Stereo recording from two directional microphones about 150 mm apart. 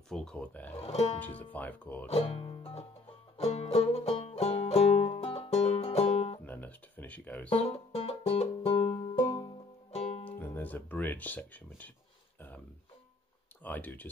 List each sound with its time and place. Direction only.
0.1 s speech: 5° left (ahead or behind)
0.7 s speech: 40° left (ahead or behind)
1.2 s speech: 10° left (ahead or behind)
2.0 s speech: 40° left (ahead or behind)
3.3 s music: 45° left (ahead or behind)
6.4 s a sound: 10° left (ahead or behind)
7.4 s music: 45° left (ahead or behind)
10.4 s speech: 10° left (ahead or behind)
12.4 s music: 10° left (ahead or behind)
13.7 s speech: 10° left (ahead or behind)